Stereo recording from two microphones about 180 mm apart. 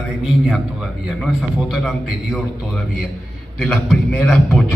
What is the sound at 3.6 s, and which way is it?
A man's voice, 5° left (ahead or behind).